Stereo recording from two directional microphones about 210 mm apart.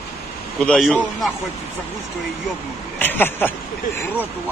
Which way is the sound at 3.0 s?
10° left (ahead or behind).